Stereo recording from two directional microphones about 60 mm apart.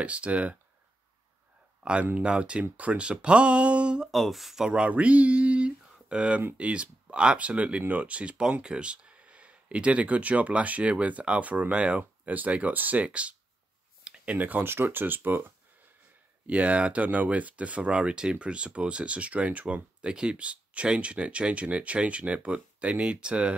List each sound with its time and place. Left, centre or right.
0.0 s speech: right
1.8 s a man's voice: centre
4.1 s speech: centre
4.8 s a sound: right
6.6 s speech: centre; by 15.5 s right
16.4 s speech: right